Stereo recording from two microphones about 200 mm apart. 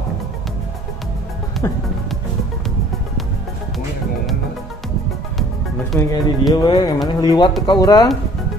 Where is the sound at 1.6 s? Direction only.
20° left (ahead or behind).